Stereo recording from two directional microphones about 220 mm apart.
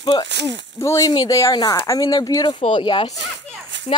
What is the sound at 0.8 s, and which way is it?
Speech, 15° left (ahead or behind).